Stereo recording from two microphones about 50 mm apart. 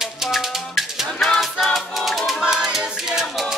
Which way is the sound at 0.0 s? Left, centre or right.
Centre.